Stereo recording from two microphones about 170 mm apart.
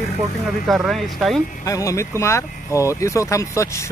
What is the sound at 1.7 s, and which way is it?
Speech, 20° left (ahead or behind).